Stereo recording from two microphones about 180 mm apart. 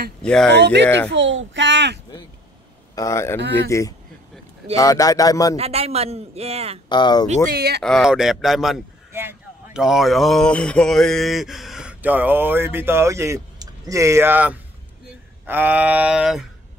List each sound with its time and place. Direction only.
0.2 s speech: 5° left (ahead or behind)
0.5 s speech: 70° right (ahead or behind)
1.1 s a sound: 90° right
3.0 s speech: 15° left (ahead or behind)
5.6 s a man's voice: 35° right (ahead or behind)
6.9 s speech: 25° left (ahead or behind)
7.5 s speech: 65° right (ahead or behind)
7.8 s speech: centre (ahead or behind)
9.1 s a sound: 15° right (ahead or behind)
9.8 s a sound: centre (ahead or behind)